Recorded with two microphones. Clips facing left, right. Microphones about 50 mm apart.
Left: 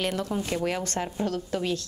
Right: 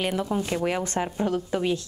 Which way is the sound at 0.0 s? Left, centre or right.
Centre.